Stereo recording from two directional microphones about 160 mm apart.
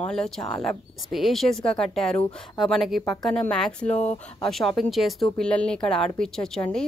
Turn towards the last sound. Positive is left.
turn(degrees=5)  # may be behind; listen again after turning